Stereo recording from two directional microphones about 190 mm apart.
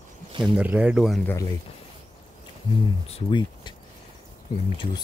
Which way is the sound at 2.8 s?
25° left (ahead or behind).